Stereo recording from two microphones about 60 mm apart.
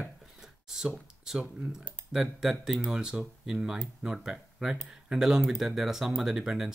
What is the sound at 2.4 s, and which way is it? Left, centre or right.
Speech, centre.